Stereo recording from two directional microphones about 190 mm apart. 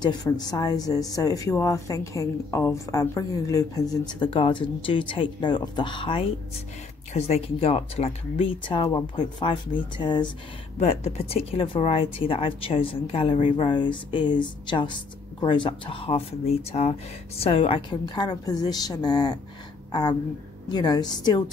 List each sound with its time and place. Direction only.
0.0 s a woman's voice: 20° left (ahead or behind)
10.8 s a woman's voice: 35° left (ahead or behind)